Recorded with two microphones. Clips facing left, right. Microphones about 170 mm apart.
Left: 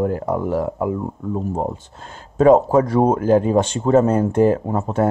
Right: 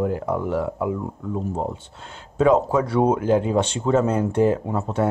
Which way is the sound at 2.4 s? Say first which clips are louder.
Left 5 dB; 45° left (ahead or behind).